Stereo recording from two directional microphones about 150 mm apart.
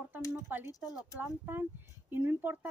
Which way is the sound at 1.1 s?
15° right (ahead or behind).